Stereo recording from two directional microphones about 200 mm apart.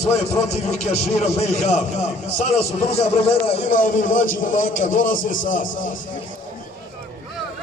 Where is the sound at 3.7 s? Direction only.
40° left (ahead or behind).